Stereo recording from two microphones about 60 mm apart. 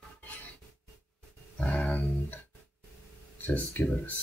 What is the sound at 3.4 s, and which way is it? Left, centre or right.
Speech, left.